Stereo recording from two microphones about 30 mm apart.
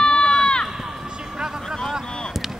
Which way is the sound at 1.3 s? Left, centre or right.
Right.